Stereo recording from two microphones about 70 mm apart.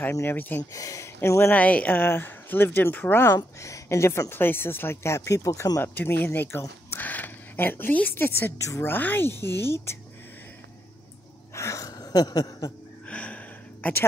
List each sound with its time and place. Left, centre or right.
0.1 s speech: left
0.7 s speech: left
1.5 s speech: left
3.5 s speech: left
5.8 s speech: left
6.9 s a sound: left
8.8 s speech: left
11.5 s a sound: left
13.0 s music: centre
13.8 s a woman's voice: left